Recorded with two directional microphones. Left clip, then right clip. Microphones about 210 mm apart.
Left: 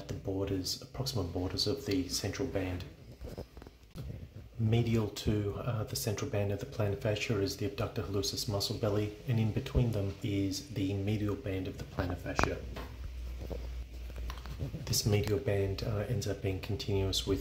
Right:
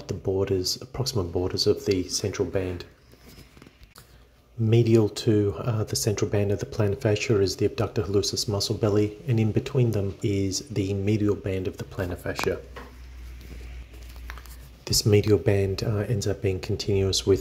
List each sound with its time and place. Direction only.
0.0 s speech: 30° right (ahead or behind)
4.6 s speech: 30° right (ahead or behind)
14.9 s speech: 30° right (ahead or behind)